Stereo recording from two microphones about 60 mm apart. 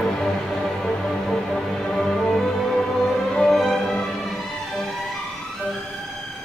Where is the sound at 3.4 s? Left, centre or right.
Centre.